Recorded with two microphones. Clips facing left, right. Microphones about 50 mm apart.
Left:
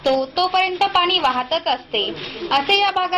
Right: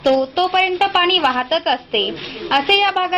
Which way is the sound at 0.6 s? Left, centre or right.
Right.